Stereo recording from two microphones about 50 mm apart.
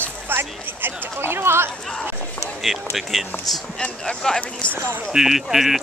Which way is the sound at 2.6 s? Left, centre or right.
Centre.